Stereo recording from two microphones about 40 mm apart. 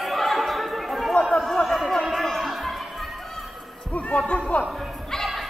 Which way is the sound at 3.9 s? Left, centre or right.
Left.